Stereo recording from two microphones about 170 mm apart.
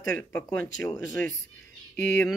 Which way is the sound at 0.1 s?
15° left (ahead or behind).